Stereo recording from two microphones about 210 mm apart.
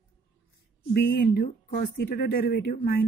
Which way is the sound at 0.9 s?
45° left (ahead or behind).